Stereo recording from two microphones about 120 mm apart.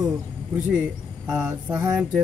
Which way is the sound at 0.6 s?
10° right (ahead or behind).